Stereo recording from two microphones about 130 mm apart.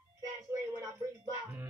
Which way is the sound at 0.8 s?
25° right (ahead or behind).